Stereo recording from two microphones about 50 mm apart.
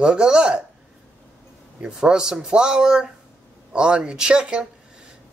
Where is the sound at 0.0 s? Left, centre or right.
Centre.